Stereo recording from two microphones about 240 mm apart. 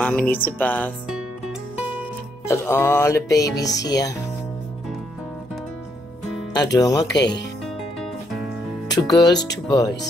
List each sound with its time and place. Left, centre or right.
0.0 s speech: centre
2.4 s speech: centre
6.5 s speech: centre
7.1 s speech: left
7.6 s music: centre
9.1 s speech: centre